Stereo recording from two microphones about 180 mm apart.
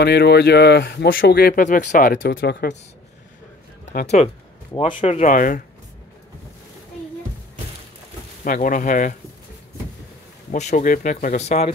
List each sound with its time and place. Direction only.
0.0 s speech: 65° left (ahead or behind)
2.3 s speech: 70° left (ahead or behind)
4.2 s speech: 40° left (ahead or behind)
5.3 s speech: 50° left (ahead or behind)
8.5 s speech: 45° left (ahead or behind)
10.5 s speech: 40° left (ahead or behind)